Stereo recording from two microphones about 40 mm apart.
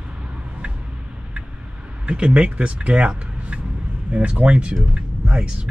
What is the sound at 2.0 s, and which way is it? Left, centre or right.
Speech, right.